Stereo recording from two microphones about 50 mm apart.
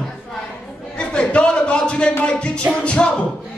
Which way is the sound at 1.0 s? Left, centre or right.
Centre.